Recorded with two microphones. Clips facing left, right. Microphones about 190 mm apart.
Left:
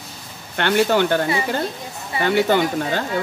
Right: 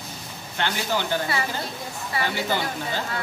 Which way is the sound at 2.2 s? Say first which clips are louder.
Left 10 dB; 60° left (ahead or behind).